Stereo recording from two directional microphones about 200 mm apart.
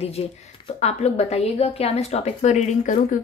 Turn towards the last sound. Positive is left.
turn(degrees=40)  # may be behind; listen again after turning